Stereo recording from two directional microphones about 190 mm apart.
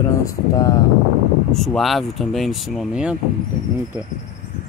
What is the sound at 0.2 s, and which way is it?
Speech, 15° left (ahead or behind).